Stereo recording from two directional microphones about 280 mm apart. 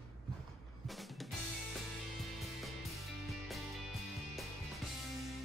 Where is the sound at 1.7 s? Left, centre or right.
Centre.